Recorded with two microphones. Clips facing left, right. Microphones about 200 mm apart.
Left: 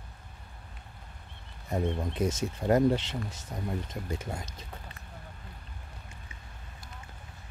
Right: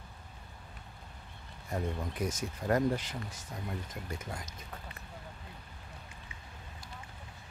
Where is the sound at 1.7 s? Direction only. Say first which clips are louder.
Left 5 dB; 25° left (ahead or behind).